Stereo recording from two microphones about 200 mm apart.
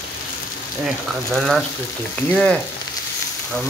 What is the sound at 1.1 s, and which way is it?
Frying, centre (ahead or behind).